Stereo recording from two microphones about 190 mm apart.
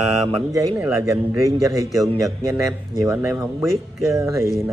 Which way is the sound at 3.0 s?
10° right (ahead or behind).